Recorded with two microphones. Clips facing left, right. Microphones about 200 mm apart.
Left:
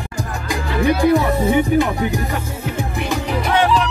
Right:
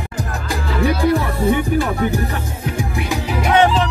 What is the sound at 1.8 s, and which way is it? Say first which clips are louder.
Music: left 1 dB; 15° left (ahead or behind).